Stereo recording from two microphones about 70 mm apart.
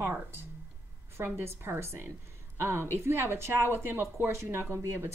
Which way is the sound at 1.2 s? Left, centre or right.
Right.